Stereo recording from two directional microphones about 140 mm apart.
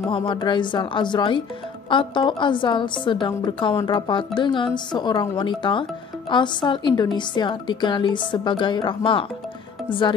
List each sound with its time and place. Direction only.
0.1 s a woman's voice: 35° left (ahead or behind)